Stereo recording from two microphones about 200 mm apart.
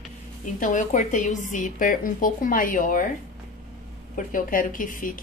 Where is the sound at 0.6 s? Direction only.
40° left (ahead or behind).